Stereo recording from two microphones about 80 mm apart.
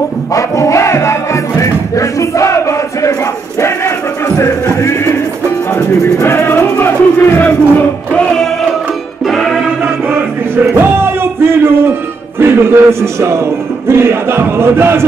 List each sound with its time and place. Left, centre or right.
0.3 s music: left
4.4 s music: left
8.1 s music: centre
9.2 s music: centre
9.8 s music: right